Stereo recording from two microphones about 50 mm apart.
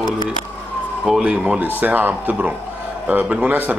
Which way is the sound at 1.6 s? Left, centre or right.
Right.